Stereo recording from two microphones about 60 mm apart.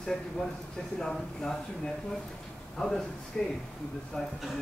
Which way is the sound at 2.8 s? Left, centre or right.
Centre.